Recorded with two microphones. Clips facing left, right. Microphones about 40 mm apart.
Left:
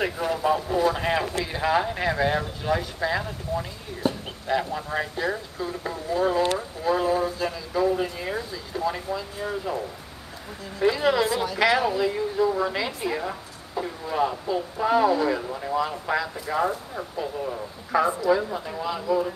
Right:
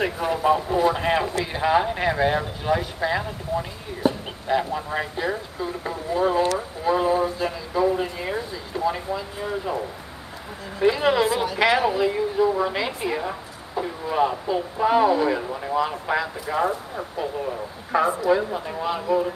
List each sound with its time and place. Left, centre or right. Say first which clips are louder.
0.0 s a woman's voice: right 2 dB; centre
6.8 s a sound: right 2 dB; centre
10.8 s a woman's voice: right 2 dB; right